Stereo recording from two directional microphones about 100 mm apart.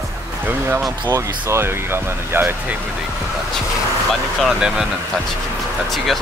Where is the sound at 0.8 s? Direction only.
35° right (ahead or behind).